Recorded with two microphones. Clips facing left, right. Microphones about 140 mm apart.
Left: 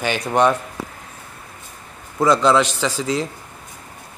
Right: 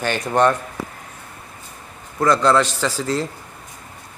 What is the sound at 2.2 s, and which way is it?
Speech, 10° left (ahead or behind).